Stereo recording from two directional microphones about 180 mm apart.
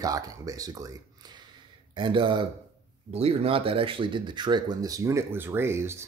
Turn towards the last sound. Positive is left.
turn(degrees=-15)  # may be behind; listen again after turning